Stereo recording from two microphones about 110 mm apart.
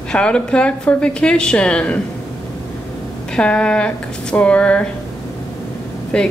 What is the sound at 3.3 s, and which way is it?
A woman's voice, 10° left (ahead or behind).